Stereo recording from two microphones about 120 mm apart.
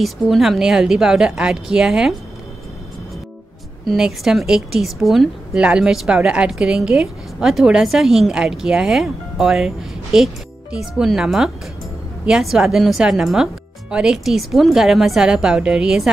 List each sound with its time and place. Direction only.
0.0 s a woman's voice: centre (ahead or behind)
3.8 s a woman's voice: 5° right (ahead or behind)